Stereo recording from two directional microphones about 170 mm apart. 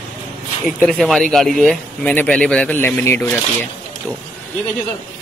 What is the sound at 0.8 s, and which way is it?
Speech, 5° left (ahead or behind).